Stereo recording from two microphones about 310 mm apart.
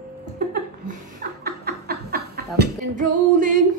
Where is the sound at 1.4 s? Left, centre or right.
Right.